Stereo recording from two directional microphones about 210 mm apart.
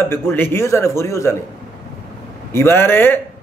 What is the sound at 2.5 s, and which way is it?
Speech, 10° left (ahead or behind).